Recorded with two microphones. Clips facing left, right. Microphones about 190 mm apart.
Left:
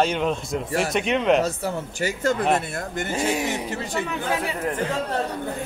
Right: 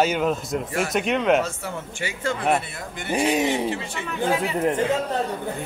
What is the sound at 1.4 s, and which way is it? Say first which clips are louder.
Speech: left 5 dB; 40° left (ahead or behind).